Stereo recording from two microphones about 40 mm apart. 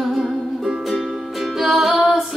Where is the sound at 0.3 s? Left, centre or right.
Centre.